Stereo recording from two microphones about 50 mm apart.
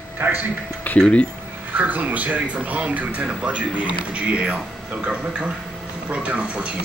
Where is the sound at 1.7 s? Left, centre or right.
Right.